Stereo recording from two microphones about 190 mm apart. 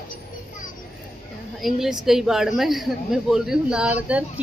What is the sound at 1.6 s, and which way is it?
Speech, centre (ahead or behind).